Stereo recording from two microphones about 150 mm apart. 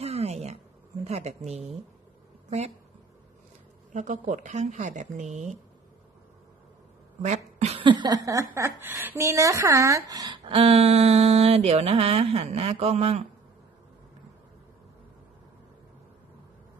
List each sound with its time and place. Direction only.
0.0 s a sound: 45° right (ahead or behind)
1.0 s speech: 45° right (ahead or behind)
3.9 s speech: 55° right (ahead or behind)
7.2 s speech: 50° right (ahead or behind)